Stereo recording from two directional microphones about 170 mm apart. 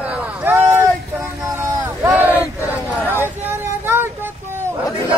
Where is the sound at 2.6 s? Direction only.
10° right (ahead or behind).